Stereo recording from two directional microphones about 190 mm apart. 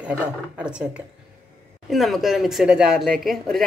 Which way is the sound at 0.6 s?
5° right (ahead or behind).